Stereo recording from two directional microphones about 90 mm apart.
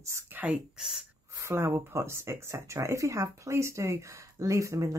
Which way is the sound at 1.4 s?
30° right (ahead or behind).